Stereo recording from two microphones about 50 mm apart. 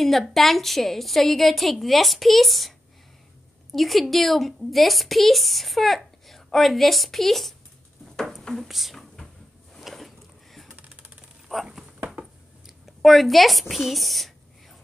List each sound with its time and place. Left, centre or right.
0.0 s a woman's voice: centre
3.7 s a woman's voice: centre
8.5 s a woman's voice: centre
8.9 s a sound: centre
11.5 s a woman's voice: centre
12.2 s a sound: centre
13.0 s a woman's voice: centre